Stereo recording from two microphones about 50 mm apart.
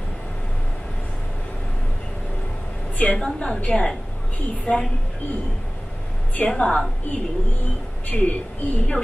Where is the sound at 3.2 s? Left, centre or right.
Centre.